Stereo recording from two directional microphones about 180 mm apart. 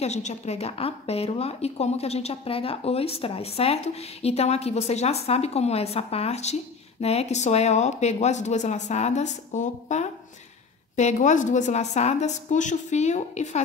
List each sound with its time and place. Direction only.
0.0 s a woman's voice: 40° left (ahead or behind)